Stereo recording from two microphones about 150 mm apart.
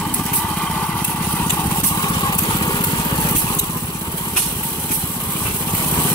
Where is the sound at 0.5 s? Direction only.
10° left (ahead or behind).